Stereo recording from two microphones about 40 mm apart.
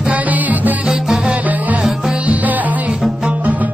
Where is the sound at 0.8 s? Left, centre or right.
Right.